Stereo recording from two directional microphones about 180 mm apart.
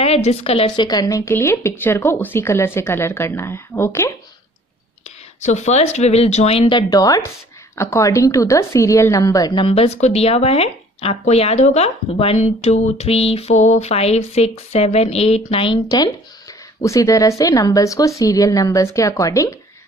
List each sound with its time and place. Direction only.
0.0 s speech: 35° left (ahead or behind)
0.8 s speech: 20° left (ahead or behind)
5.4 s speech: 40° left (ahead or behind); by 19.5 s 20° left (ahead or behind)